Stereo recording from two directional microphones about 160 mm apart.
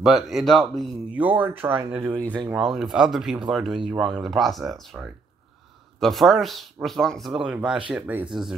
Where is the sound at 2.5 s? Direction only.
Centre (ahead or behind).